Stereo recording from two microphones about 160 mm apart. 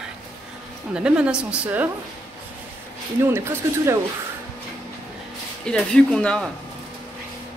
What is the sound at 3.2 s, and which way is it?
Speech, 15° right (ahead or behind).